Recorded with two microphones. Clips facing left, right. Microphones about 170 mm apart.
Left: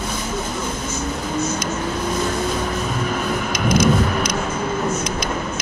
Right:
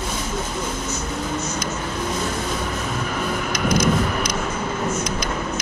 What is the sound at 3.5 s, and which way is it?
Vehicle, 25° left (ahead or behind).